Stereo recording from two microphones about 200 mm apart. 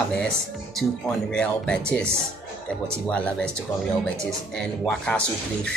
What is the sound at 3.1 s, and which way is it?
Speech, 5° left (ahead or behind).